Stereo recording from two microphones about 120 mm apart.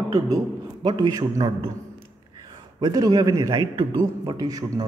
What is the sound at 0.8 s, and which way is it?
Speech, 35° right (ahead or behind).